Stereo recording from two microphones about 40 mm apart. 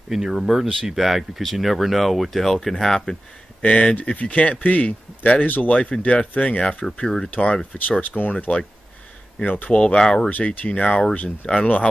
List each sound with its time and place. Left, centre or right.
0.1 s speech: centre
3.6 s speech: left
7.0 s speech: centre
7.3 s speech: left
8.2 s speech: left
9.9 s speech: centre
10.3 s speech: left
10.8 s speech: left
11.6 s speech: left